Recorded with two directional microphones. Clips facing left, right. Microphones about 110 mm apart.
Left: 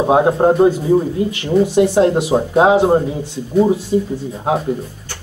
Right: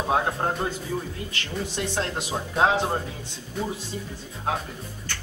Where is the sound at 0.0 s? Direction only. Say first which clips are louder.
Left 12 dB; 25° left (ahead or behind).